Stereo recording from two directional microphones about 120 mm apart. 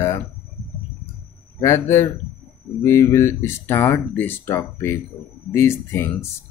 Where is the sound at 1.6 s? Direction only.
20° left (ahead or behind).